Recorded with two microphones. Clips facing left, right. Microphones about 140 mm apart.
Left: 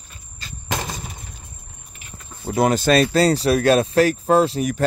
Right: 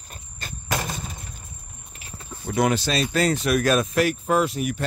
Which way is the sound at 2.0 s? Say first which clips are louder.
Right 1 dB; 35° right (ahead or behind).